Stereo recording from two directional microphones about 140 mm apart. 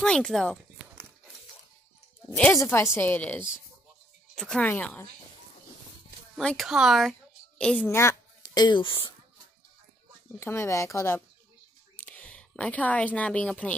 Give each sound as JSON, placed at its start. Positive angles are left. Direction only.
{"t": 0.0, "sound": "speech", "side_deg": 5}
{"t": 2.2, "sound": "a woman's voice", "side_deg": 10}
{"t": 2.5, "sound": "speech", "side_deg": 20}
{"t": 6.3, "sound": "a woman's voice", "side_deg": 0}
{"t": 10.4, "sound": "a woman's voice", "side_deg": 20}